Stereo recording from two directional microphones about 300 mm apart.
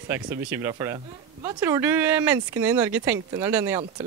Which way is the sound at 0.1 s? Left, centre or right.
Centre.